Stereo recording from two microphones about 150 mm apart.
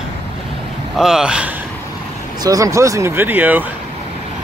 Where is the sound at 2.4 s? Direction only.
20° right (ahead or behind).